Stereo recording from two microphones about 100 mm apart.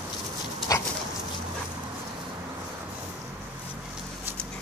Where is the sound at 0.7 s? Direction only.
35° left (ahead or behind).